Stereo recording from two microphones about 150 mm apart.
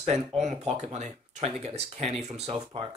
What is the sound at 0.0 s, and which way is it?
Speech, 45° right (ahead or behind).